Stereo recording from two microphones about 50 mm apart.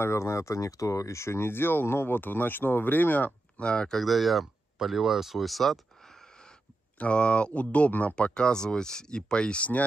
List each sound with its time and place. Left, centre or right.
0.0 s speech: left
3.5 s speech: centre
4.0 s speech: centre
7.0 s speech: left
8.2 s speech: centre